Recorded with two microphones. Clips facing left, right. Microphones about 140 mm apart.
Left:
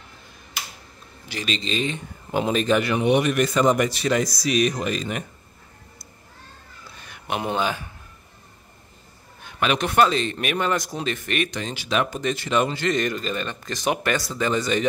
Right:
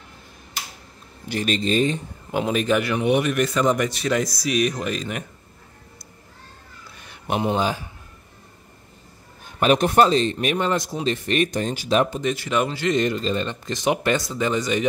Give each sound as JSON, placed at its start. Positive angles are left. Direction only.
{"t": 1.3, "sound": "speech", "side_deg": -50}
{"t": 2.5, "sound": "speech", "side_deg": -10}
{"t": 7.5, "sound": "speech", "side_deg": -35}
{"t": 9.6, "sound": "speech", "side_deg": -40}
{"t": 12.2, "sound": "speech", "side_deg": -10}
{"t": 12.9, "sound": "speech", "side_deg": -25}